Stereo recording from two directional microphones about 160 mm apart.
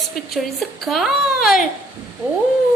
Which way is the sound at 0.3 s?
Centre (ahead or behind).